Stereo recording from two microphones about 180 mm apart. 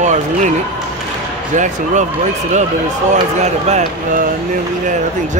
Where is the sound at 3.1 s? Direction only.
40° right (ahead or behind).